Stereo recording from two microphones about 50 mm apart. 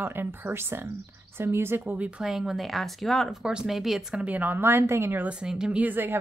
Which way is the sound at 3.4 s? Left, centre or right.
Centre.